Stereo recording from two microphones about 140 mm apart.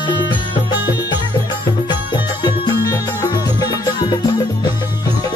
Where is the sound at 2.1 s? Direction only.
30° left (ahead or behind).